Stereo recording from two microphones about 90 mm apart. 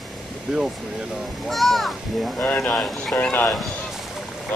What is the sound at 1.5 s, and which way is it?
Speech, centre (ahead or behind).